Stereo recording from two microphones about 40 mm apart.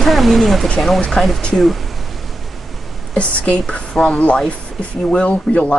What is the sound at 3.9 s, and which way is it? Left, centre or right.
Speech, centre.